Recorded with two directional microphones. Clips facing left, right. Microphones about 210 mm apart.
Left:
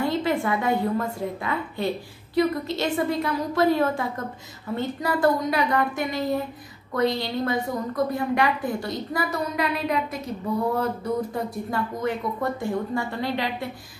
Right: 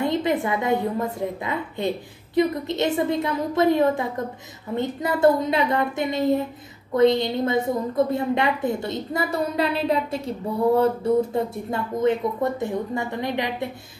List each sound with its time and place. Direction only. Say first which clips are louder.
0.0 s a woman's voice: right 1 dB; 20° right (ahead or behind)